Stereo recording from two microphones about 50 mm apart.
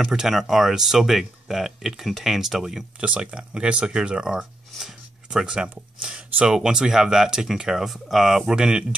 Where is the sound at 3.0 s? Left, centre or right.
Right; by 8.5 s centre.